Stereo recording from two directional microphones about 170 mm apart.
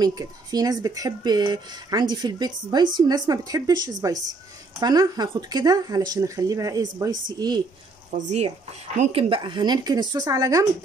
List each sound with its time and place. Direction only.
0.0 s speech: 20° right (ahead or behind)
8.9 s speech: 40° right (ahead or behind); by 10.7 s 20° right (ahead or behind)